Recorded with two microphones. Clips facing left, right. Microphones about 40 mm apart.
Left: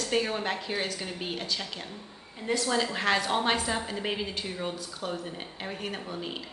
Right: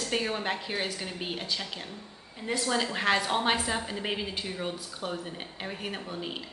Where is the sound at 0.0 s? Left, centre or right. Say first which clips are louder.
Left 2 dB; centre.